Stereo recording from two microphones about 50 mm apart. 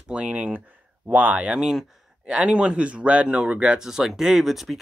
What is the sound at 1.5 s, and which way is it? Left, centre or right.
Speech, centre.